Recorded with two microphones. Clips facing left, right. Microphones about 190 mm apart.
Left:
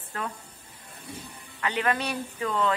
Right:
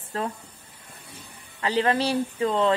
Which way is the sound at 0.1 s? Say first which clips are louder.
Right 5 dB; 30° right (ahead or behind).